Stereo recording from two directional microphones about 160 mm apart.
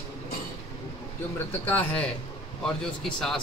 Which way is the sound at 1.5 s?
10° left (ahead or behind).